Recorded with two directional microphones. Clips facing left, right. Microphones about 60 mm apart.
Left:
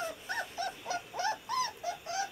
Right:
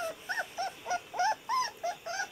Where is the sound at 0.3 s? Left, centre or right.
Right.